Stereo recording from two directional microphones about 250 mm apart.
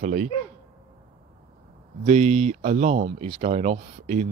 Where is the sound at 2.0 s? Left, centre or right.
Right.